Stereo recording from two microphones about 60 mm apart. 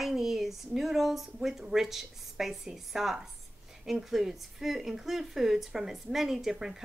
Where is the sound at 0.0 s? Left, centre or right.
Centre.